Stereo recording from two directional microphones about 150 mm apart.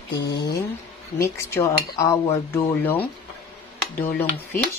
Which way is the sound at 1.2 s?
20° left (ahead or behind).